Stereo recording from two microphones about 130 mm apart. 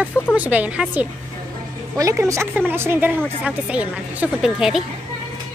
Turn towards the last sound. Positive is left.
turn(degrees=-5)  # may be behind; listen again after turning